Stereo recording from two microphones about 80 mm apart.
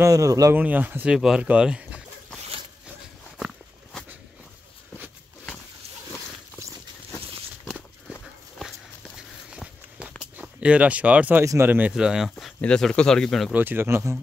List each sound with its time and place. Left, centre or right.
0.0 s speech: right
0.6 s speech: right
1.1 s speech: centre
8.1 s horse: centre
9.6 s walk: centre
10.3 s speech: centre
11.9 s speech: centre
12.5 s a man's voice: centre
13.5 s speech: right